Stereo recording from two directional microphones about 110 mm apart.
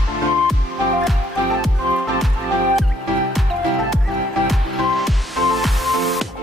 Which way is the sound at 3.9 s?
Centre (ahead or behind).